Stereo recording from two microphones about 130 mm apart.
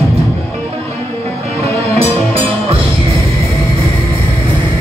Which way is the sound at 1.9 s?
50° right (ahead or behind).